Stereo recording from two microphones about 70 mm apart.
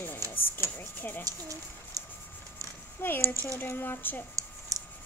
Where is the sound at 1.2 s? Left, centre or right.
Right.